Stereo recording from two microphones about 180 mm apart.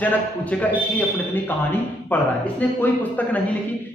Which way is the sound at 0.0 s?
10° left (ahead or behind).